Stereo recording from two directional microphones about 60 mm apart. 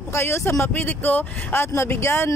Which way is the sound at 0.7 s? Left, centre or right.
Left.